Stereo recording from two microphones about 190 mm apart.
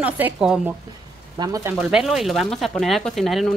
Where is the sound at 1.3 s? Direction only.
20° right (ahead or behind).